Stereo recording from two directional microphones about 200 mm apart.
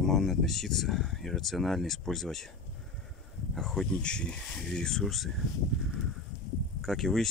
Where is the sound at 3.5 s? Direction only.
Centre (ahead or behind).